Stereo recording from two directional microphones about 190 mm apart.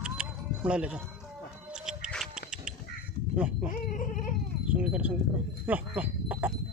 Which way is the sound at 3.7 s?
45° left (ahead or behind).